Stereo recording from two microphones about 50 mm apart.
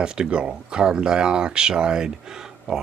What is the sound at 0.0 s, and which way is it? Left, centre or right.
Speech, centre.